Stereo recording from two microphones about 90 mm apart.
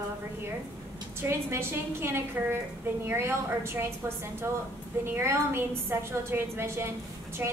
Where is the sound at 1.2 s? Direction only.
30° right (ahead or behind).